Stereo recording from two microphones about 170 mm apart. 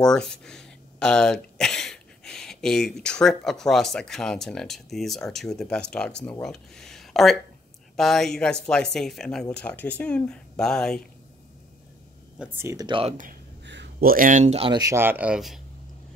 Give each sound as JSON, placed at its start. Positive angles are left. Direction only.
{"t": 0.0, "sound": "speech", "side_deg": 5}
{"t": 12.4, "sound": "speech", "side_deg": -15}
{"t": 12.8, "sound": "speech", "side_deg": -30}
{"t": 13.7, "sound": "a sound", "side_deg": -90}
{"t": 14.1, "sound": "speech", "side_deg": -50}
{"t": 14.4, "sound": "speech", "side_deg": -35}
{"t": 14.8, "sound": "speech", "side_deg": -15}